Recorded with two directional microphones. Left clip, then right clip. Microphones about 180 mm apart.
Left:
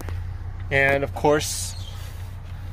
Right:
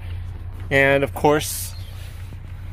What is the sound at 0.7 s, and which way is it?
Speech, 25° right (ahead or behind).